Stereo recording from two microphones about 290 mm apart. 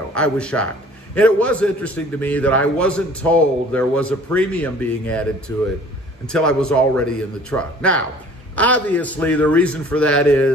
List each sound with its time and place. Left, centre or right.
0.1 s a man's voice: centre
6.2 s a man's voice: centre